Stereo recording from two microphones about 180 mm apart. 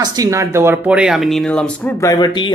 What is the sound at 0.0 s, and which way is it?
Speech, 20° right (ahead or behind).